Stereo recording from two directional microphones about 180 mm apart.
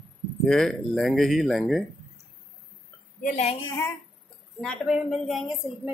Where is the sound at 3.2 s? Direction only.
40° left (ahead or behind).